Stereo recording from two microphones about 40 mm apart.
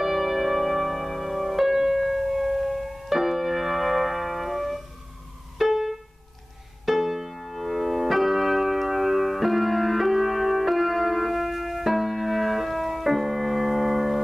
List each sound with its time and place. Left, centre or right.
0.0 s music: centre
6.9 s keyboard: centre